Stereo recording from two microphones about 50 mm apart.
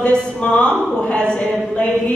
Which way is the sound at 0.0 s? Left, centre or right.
Left.